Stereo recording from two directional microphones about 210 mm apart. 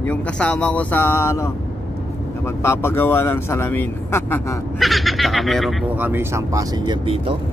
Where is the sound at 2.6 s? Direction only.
10° left (ahead or behind).